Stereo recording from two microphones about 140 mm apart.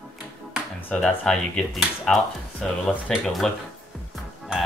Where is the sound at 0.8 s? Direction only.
10° left (ahead or behind).